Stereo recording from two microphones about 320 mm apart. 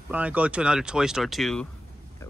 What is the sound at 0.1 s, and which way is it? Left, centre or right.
Speech, centre.